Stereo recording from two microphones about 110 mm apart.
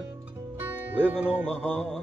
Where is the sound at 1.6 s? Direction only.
10° left (ahead or behind).